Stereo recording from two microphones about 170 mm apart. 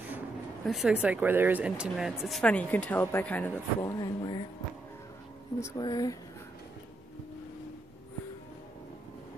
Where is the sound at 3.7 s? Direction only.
20° left (ahead or behind).